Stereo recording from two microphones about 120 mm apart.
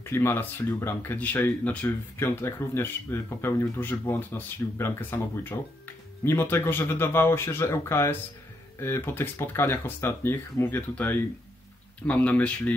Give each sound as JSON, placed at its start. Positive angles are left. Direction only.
{"t": 0.0, "sound": "speech", "side_deg": 20}